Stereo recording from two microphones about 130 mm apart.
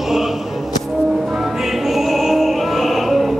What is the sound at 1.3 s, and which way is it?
Music, centre (ahead or behind).